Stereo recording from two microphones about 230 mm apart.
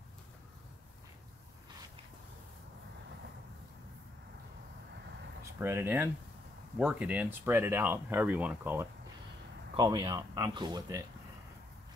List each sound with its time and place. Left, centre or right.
5.4 s speech: centre